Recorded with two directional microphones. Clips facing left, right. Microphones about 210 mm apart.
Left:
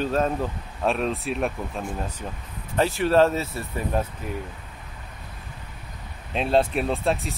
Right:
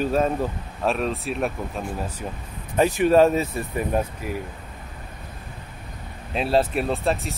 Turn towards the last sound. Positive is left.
turn(degrees=0)  # may be behind; listen again after turning